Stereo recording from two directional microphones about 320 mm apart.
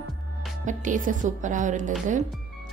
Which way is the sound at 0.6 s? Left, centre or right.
Right.